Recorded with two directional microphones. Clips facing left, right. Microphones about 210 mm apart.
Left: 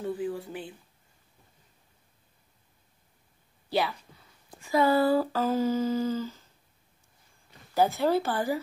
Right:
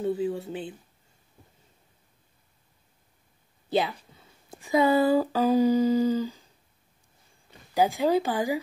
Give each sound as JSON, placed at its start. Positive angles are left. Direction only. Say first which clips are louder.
{"t": 0.0, "sound": "speech", "louder": "right 4 dB", "side_deg": -25}
{"t": 3.6, "sound": "speech", "louder": "right 2 dB", "side_deg": -20}
{"t": 7.7, "sound": "speech", "louder": "right 1 dB", "side_deg": -15}